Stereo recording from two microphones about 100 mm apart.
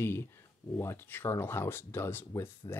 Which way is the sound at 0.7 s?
25° left (ahead or behind).